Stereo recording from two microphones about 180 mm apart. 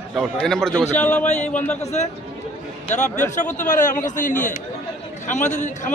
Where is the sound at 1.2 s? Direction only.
40° left (ahead or behind).